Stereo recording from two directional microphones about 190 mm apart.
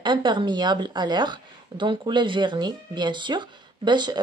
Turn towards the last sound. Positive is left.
turn(degrees=-20)  # may be behind; listen again after turning